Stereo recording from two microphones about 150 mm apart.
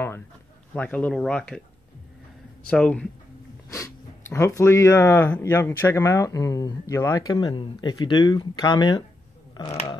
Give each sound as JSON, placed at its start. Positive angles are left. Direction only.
{"t": 0.7, "sound": "speech", "side_deg": 10}
{"t": 2.7, "sound": "speech", "side_deg": 5}
{"t": 3.7, "sound": "speech", "side_deg": 20}